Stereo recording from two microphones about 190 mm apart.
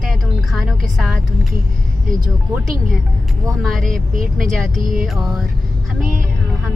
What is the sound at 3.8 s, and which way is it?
Speech, 45° right (ahead or behind).